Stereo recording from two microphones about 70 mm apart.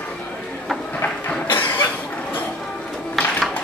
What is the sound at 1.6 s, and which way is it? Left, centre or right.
Cough, left.